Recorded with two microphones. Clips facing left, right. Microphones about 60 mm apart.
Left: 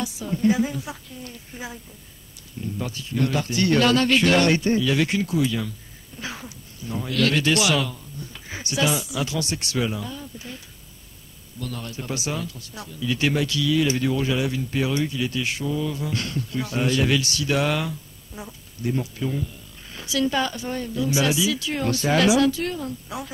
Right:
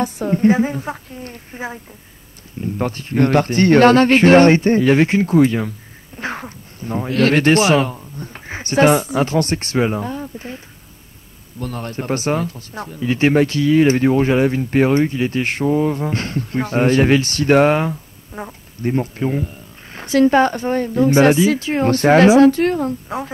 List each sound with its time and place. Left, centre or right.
0.0 s speech: right
11.6 s speech: right